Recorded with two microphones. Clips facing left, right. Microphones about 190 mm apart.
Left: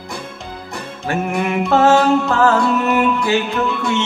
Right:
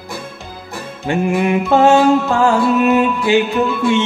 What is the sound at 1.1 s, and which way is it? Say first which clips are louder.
Music: right 4 dB; 15° right (ahead or behind).